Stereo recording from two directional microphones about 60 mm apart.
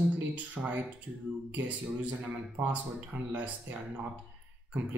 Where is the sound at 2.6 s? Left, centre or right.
Right.